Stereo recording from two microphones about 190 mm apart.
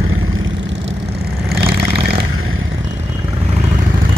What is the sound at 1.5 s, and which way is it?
Vehicle, 55° right (ahead or behind).